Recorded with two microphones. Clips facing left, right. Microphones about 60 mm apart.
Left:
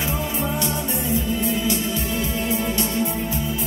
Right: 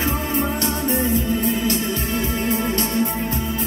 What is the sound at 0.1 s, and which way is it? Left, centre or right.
Music, right.